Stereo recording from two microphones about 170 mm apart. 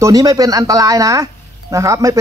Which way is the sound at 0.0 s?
20° right (ahead or behind).